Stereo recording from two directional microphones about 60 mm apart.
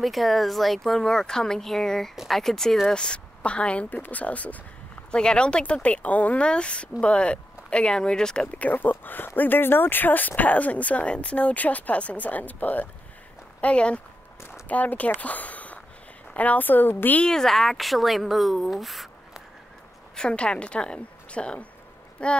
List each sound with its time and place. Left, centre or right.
0.0 s speech: centre
2.9 s speech: centre
8.5 s a woman's voice: left
17.2 s speech: centre
20.2 s speech: centre